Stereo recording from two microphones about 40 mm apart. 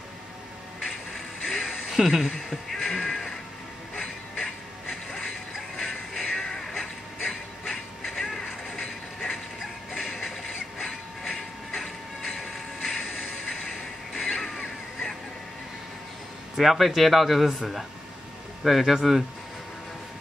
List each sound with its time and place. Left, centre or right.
0.8 s mechanisms: centre
1.6 s music: centre
2.7 s music: centre
3.9 s music: centre
5.8 s music: centre
9.2 s dog: centre
10.0 s a sound: centre
10.9 s train: centre
11.7 s train: centre
14.1 s crow: centre
16.5 s speech: centre